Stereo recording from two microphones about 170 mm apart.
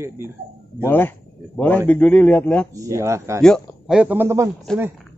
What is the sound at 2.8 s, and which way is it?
Speech, 20° right (ahead or behind).